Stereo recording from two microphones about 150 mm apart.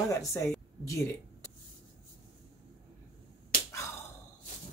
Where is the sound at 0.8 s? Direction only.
20° left (ahead or behind).